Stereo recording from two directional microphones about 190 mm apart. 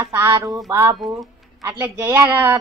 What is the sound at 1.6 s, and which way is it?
Speech, 10° right (ahead or behind).